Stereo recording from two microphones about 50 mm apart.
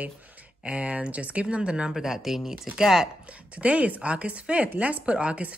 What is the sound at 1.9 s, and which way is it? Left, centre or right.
Speech, centre.